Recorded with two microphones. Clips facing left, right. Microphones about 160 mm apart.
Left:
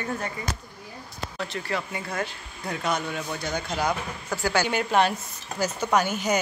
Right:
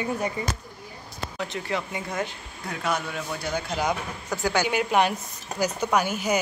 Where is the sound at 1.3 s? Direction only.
20° right (ahead or behind).